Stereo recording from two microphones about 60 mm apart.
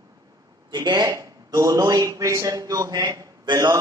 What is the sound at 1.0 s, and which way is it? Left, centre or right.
A woman's voice, right.